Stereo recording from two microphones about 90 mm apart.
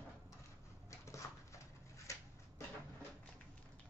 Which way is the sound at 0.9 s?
35° left (ahead or behind).